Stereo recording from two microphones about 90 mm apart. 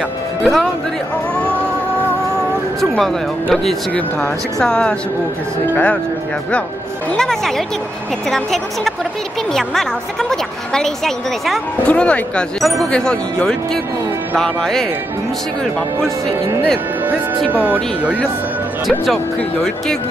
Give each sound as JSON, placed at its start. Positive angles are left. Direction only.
{"t": 0.4, "sound": "speech", "side_deg": 0}
{"t": 3.0, "sound": "speech", "side_deg": 5}
{"t": 7.1, "sound": "speech", "side_deg": 5}
{"t": 17.5, "sound": "speech", "side_deg": -20}